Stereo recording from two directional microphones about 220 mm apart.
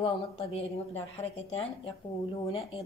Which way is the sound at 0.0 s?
25° left (ahead or behind).